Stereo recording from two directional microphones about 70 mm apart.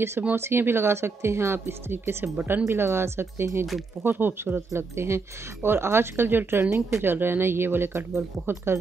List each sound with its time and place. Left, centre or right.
0.4 s a woman's voice: right